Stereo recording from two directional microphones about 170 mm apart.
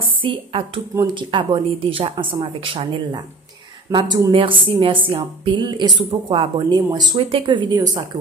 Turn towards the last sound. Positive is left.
turn(degrees=-25)  # may be behind; listen again after turning